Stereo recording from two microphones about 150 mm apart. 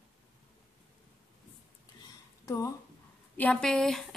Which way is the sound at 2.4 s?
20° left (ahead or behind).